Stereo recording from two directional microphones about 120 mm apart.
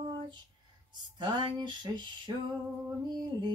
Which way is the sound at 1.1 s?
40° right (ahead or behind).